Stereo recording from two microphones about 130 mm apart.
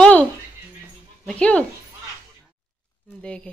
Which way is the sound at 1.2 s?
10° left (ahead or behind).